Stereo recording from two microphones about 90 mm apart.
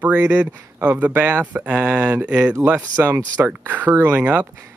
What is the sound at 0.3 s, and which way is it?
Speech, 15° right (ahead or behind).